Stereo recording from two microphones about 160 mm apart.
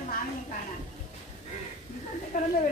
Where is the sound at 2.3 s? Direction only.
55° left (ahead or behind).